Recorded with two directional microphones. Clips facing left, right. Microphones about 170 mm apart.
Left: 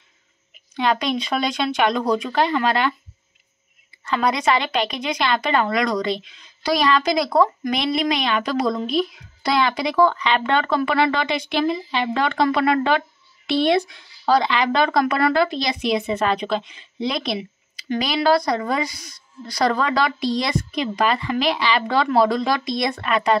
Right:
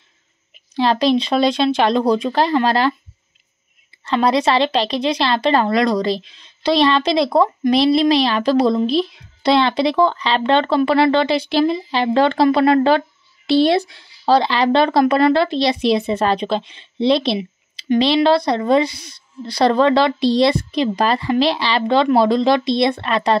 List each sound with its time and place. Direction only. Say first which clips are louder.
0.7 s a woman's voice: right 6 dB; 30° right (ahead or behind)
4.0 s a woman's voice: right 5 dB; 30° right (ahead or behind)